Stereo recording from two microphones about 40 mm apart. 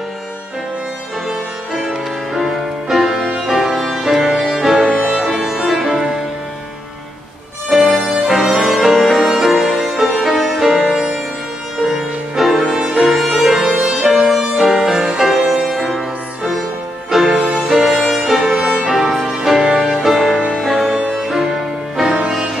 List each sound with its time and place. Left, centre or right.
1.9 s music: centre
7.7 s music: centre
13.7 s music: right
14.0 s music: centre
17.1 s music: centre